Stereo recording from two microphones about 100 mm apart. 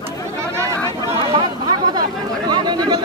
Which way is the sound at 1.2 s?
50° right (ahead or behind).